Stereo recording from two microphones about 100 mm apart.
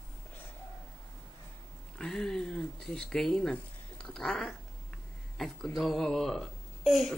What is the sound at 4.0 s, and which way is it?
Cat, 5° left (ahead or behind).